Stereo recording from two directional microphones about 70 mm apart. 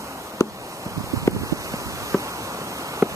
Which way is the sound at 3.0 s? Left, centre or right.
Right.